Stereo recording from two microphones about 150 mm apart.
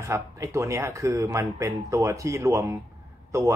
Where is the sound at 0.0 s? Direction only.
20° right (ahead or behind).